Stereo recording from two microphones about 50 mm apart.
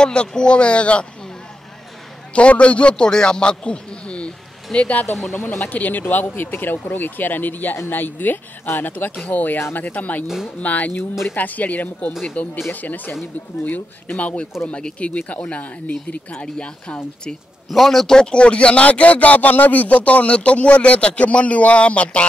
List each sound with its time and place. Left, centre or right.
0.0 s a man's voice: centre
2.3 s a man's voice: left
5.3 s speech: left
10.2 s speech: centre
10.6 s a man's voice: left
17.6 s a man's voice: centre; by 22.2 s left